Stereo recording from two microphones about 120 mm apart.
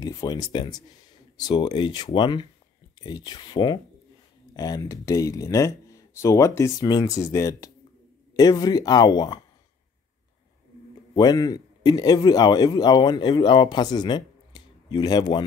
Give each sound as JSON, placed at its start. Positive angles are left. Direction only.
{"t": 0.0, "sound": "speech", "side_deg": 35}
{"t": 11.1, "sound": "a man's voice", "side_deg": 35}